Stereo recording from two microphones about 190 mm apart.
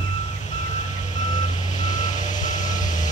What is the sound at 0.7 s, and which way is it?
Reversing beeps, 40° left (ahead or behind).